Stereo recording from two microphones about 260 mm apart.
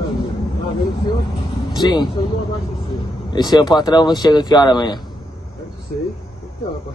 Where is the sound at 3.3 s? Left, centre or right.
Centre.